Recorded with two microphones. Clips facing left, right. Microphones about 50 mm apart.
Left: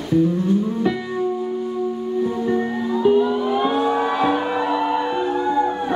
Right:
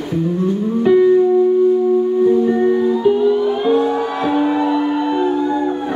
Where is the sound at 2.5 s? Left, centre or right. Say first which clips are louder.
Right 8 dB; centre.